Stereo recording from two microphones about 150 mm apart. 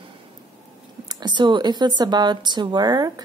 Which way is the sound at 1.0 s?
30° right (ahead or behind).